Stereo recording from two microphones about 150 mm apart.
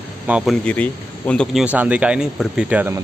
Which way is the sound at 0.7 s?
10° left (ahead or behind).